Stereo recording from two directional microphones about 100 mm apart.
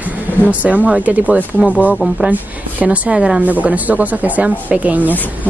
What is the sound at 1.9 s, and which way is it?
Speech, centre (ahead or behind).